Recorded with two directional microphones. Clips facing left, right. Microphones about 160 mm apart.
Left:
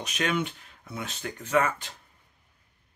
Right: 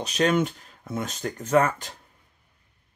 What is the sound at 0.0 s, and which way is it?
Speech, 35° right (ahead or behind).